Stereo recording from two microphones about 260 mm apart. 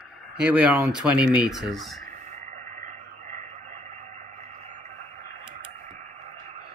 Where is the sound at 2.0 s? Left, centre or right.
Right.